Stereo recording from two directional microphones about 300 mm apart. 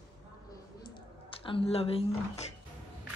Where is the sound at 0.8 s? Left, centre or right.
Centre.